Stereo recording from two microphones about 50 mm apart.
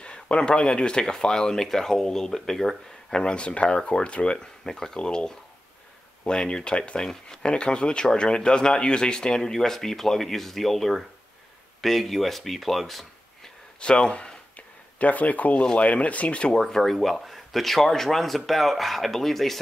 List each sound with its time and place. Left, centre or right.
0.0 s speech: centre
13.7 s speech: centre
15.0 s speech: left
16.5 s speech: centre